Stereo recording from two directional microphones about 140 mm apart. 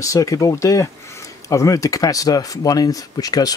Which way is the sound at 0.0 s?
25° left (ahead or behind).